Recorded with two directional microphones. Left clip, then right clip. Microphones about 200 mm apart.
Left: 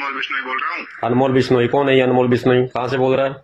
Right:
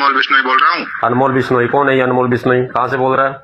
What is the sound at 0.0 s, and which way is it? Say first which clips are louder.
Speech: right 11 dB; 40° right (ahead or behind).